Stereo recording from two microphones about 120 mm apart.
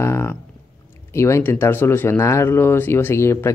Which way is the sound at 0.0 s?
20° left (ahead or behind).